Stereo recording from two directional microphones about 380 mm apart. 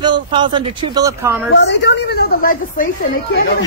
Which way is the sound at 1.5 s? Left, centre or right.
Left.